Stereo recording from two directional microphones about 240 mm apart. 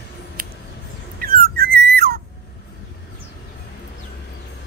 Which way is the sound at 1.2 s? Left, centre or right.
Right.